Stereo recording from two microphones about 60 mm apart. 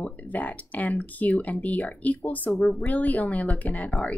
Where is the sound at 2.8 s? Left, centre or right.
Left.